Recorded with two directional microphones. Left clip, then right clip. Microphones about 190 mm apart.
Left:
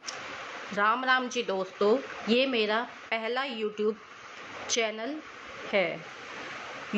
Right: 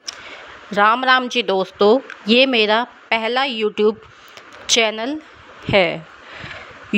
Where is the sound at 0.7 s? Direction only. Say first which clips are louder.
Right 11 dB; 55° right (ahead or behind).